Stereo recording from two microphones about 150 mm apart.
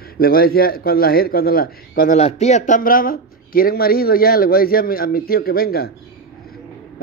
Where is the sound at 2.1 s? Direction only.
45° left (ahead or behind); by 5.9 s 90° left.